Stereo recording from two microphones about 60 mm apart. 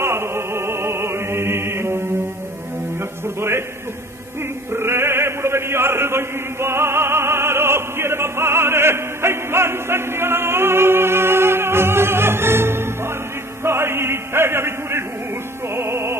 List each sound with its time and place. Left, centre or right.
0.0 s music: right
3.3 s music: right
4.7 s chant: right
15.7 s music: right